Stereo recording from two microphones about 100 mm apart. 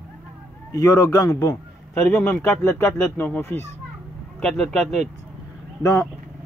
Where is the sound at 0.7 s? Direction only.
35° left (ahead or behind).